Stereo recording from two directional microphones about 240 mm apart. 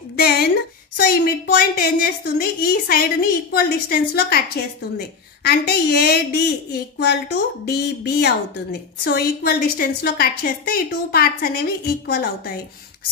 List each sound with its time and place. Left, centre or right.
0.1 s a woman's voice: left